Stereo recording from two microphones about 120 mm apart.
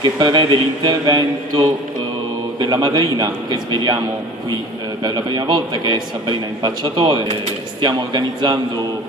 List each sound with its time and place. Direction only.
0.0 s a man's voice: 40° right (ahead or behind)
5.0 s a man's voice: 35° right (ahead or behind)